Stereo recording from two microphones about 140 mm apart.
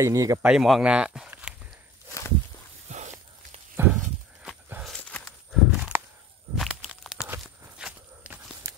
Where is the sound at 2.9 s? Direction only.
55° right (ahead or behind).